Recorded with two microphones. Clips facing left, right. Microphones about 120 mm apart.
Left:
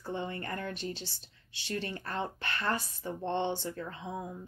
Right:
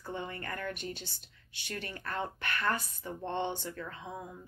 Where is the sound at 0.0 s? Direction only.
25° left (ahead or behind).